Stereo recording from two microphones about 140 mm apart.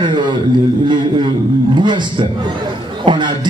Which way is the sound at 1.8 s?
35° right (ahead or behind).